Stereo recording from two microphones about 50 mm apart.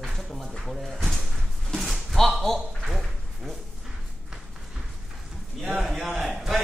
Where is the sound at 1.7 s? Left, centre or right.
Centre.